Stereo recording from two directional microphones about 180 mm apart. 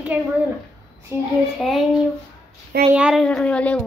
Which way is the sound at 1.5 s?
Centre (ahead or behind).